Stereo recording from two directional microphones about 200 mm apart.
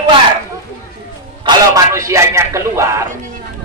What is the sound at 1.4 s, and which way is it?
Speech, 15° right (ahead or behind).